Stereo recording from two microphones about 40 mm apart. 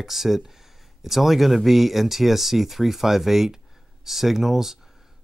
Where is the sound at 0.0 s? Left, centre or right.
Centre.